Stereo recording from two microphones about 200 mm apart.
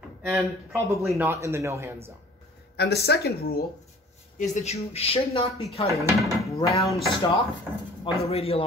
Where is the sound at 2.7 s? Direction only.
55° left (ahead or behind).